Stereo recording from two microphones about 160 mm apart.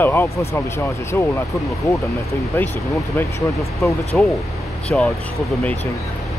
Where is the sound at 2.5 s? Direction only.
15° left (ahead or behind).